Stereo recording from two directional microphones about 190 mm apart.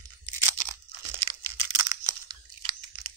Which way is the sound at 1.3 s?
15° right (ahead or behind).